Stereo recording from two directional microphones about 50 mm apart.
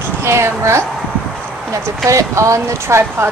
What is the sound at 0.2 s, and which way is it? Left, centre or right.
Speech, right.